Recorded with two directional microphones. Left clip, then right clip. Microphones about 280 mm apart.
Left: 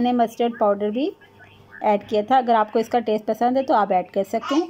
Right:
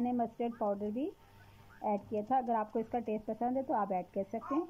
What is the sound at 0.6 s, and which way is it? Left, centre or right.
A child's voice, left.